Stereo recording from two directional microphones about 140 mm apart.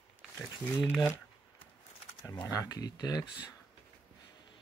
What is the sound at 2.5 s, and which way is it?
Speech, 25° left (ahead or behind).